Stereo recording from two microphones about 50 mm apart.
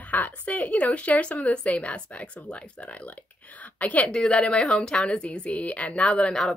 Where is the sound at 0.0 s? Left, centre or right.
Left.